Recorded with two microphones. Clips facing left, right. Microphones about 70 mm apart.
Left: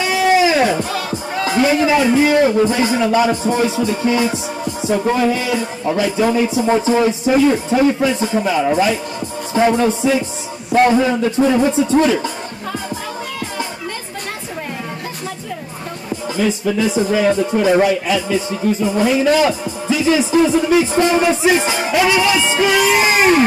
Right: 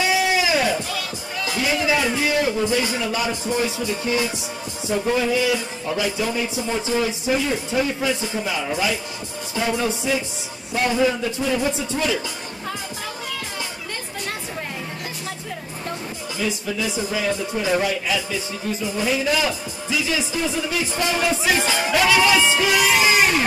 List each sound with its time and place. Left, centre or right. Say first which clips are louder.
0.3 s a man's voice: left 7 dB; left
10.7 s music: left 10 dB; left
11.1 s a man's voice: left 7 dB; left
16.3 s a man's voice: left 8 dB; left